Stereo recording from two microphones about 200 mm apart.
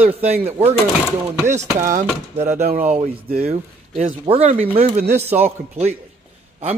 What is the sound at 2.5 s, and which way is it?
A man's voice, 40° right (ahead or behind).